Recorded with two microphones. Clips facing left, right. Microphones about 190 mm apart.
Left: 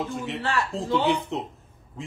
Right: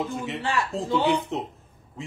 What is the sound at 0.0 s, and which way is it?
Speech, centre (ahead or behind).